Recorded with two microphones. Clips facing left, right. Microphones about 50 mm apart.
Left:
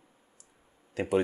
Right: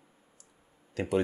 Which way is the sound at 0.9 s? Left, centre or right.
Centre.